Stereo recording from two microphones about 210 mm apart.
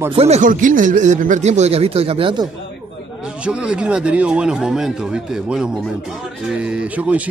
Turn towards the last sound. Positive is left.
turn(degrees=-5)  # may be behind; listen again after turning